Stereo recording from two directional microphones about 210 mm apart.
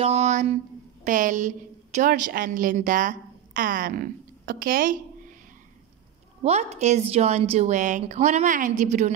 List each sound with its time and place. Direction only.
0.0 s a sound: 30° right (ahead or behind)
1.0 s a woman's voice: 35° right (ahead or behind)
6.4 s a woman's voice: 30° right (ahead or behind)